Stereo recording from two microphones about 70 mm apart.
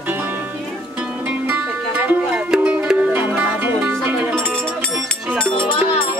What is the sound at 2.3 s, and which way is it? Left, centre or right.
Music, centre.